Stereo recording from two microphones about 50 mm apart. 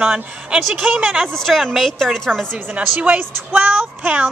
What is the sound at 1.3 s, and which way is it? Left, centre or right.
A woman's voice, centre.